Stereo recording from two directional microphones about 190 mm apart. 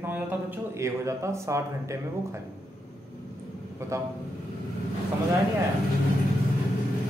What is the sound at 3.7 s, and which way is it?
Speech, 15° right (ahead or behind).